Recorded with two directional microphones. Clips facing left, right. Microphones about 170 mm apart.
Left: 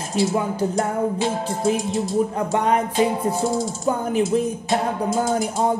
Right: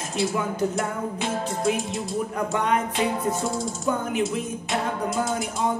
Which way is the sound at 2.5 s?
35° left (ahead or behind).